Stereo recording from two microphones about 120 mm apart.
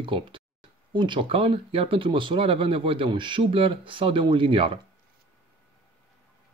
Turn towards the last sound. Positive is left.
turn(degrees=-45)  # may be behind; listen again after turning